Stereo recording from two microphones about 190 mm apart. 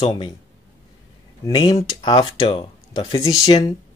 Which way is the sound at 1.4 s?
20° left (ahead or behind).